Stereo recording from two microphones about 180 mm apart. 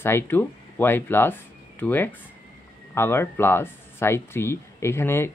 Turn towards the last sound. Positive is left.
turn(degrees=15)  # may be behind; listen again after turning